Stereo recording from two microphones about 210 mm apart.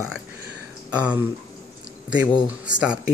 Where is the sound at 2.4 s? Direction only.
5° right (ahead or behind).